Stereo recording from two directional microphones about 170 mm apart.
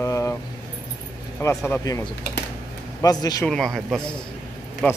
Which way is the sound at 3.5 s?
Centre (ahead or behind).